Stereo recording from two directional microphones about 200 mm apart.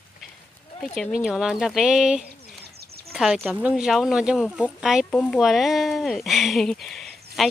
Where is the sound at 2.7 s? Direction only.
50° right (ahead or behind).